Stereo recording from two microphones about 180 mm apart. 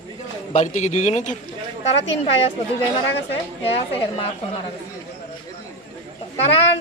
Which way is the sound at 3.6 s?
30° left (ahead or behind).